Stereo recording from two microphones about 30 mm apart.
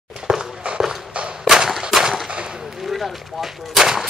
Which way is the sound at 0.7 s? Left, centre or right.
Right.